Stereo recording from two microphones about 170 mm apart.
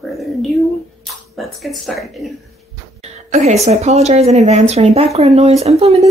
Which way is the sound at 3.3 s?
40° right (ahead or behind).